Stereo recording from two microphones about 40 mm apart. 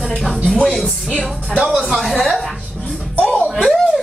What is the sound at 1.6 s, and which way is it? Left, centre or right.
Speech, centre.